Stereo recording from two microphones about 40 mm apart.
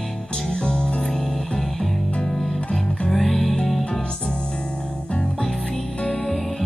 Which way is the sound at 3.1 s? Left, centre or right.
Centre.